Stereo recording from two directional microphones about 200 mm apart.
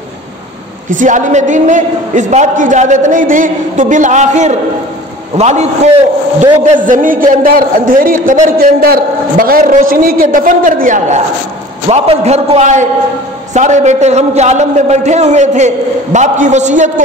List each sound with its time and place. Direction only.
0.8 s a man's voice: 40° right (ahead or behind)